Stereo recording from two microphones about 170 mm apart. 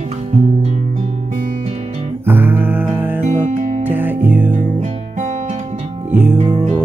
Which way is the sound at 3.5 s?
50° right (ahead or behind).